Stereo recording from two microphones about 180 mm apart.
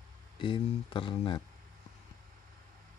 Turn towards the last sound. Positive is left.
turn(degrees=25)  # may be behind; listen again after turning